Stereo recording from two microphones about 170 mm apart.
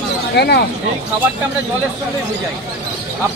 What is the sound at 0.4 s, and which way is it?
Speech, 75° left (ahead or behind).